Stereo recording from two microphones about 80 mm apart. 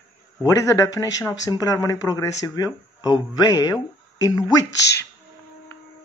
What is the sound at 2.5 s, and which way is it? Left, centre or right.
Speech, left.